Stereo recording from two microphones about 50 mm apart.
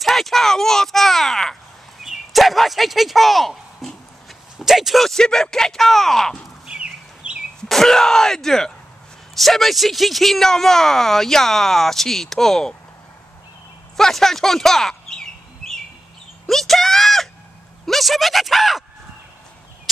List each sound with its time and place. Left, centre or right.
0.0 s a sound: centre
2.0 s speech: centre
6.7 s bird: right
7.6 s speech: centre
13.9 s speech: centre
15.6 s bird: centre
16.4 s a sound: centre
17.8 s speech: centre